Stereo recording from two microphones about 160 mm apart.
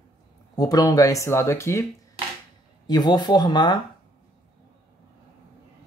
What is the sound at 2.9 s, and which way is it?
Speech, 25° left (ahead or behind).